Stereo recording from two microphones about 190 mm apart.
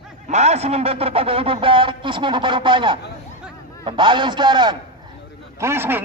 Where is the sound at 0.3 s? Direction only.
35° right (ahead or behind).